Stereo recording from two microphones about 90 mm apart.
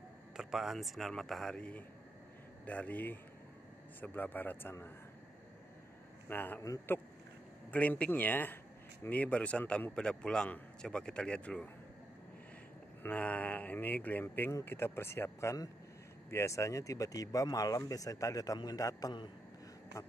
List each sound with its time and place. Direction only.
0.4 s a man's voice: 5° right (ahead or behind); by 4.7 s 20° left (ahead or behind)
6.2 s a man's voice: 25° left (ahead or behind)
13.0 s speech: 20° left (ahead or behind); by 19.1 s 45° left (ahead or behind)